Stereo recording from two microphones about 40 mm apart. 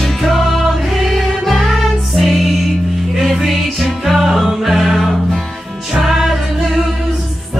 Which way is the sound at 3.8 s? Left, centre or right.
Centre.